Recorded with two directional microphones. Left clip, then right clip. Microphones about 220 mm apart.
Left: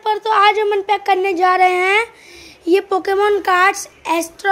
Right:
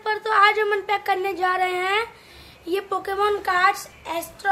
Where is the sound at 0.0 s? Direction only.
25° left (ahead or behind).